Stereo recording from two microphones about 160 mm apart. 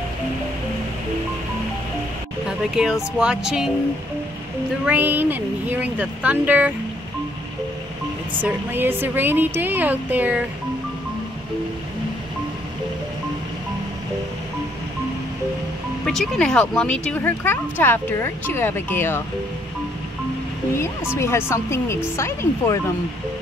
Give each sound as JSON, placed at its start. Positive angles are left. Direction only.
{"t": 2.4, "sound": "speech", "side_deg": -5}
{"t": 4.8, "sound": "speech", "side_deg": -10}
{"t": 8.4, "sound": "speech", "side_deg": -10}
{"t": 16.1, "sound": "speech", "side_deg": 5}
{"t": 21.2, "sound": "speech", "side_deg": 15}